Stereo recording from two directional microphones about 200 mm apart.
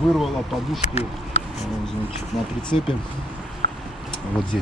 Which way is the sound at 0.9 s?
30° left (ahead or behind).